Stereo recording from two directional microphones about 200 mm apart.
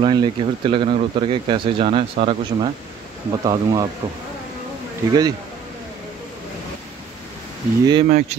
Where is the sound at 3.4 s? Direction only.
20° right (ahead or behind).